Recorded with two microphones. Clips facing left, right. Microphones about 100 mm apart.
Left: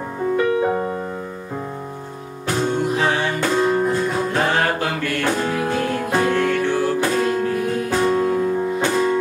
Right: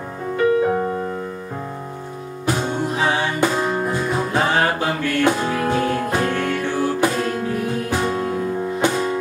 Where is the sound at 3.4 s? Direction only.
15° right (ahead or behind).